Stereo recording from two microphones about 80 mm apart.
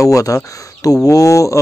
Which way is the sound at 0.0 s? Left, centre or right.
Left.